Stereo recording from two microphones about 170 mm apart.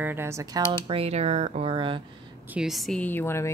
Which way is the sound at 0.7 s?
35° right (ahead or behind).